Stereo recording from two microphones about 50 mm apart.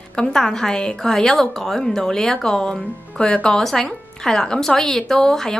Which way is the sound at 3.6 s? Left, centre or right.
Centre.